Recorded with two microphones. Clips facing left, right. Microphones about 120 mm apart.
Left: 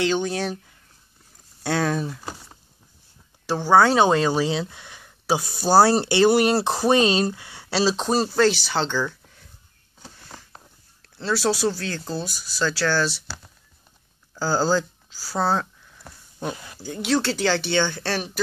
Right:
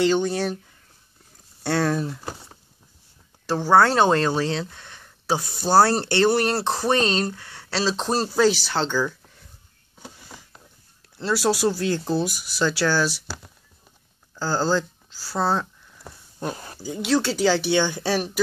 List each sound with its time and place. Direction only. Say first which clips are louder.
0.0 s speech: right 2 dB; centre (ahead or behind)
1.6 s speech: right 1 dB; centre (ahead or behind)
11.1 s speech: right 1 dB; 5° right (ahead or behind)
14.3 s a sound: left 1 dB; 5° left (ahead or behind)
16.5 s speech: right 3 dB; 40° right (ahead or behind)
16.8 s speech: right 1 dB; 5° right (ahead or behind)